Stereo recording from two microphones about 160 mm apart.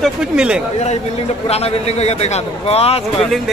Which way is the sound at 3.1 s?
Centre (ahead or behind).